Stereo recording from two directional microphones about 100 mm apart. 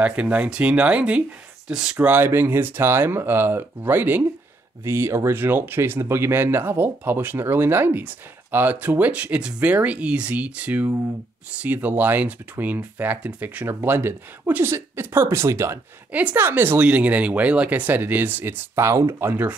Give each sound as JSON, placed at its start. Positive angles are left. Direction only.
{"t": 0.0, "sound": "speech", "side_deg": -15}
{"t": 16.1, "sound": "speech", "side_deg": -15}